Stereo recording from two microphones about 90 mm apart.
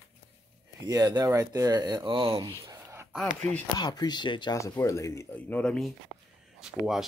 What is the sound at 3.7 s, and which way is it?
Speech, 50° left (ahead or behind).